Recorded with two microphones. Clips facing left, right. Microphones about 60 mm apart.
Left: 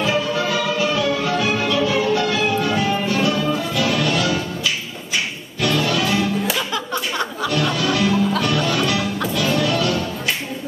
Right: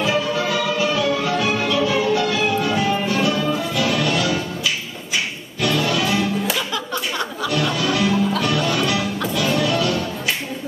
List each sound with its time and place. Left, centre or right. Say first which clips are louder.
0.0 s music: even; centre
5.6 s music: even; centre
6.7 s a sound: left 1 dB; left
7.7 s music: left 1 dB; centre